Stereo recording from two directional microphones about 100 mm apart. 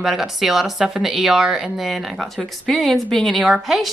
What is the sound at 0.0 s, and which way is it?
A woman's voice, 5° right (ahead or behind).